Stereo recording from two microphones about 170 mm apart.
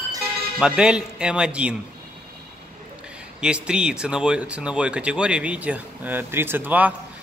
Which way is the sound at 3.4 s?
5° right (ahead or behind).